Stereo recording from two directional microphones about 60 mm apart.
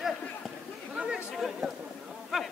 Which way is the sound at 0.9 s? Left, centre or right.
Centre.